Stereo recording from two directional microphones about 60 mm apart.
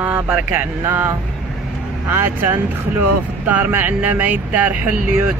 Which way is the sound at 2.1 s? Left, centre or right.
Right.